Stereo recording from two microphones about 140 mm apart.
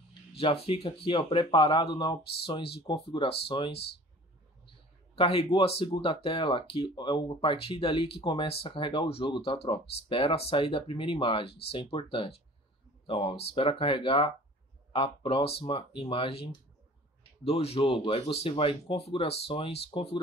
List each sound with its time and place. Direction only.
0.4 s speech: 40° left (ahead or behind)
5.1 s speech: 40° left (ahead or behind)
17.5 s speech: 45° left (ahead or behind)